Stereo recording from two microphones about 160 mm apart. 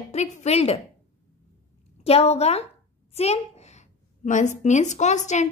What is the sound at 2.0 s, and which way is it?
A child's voice, 40° left (ahead or behind).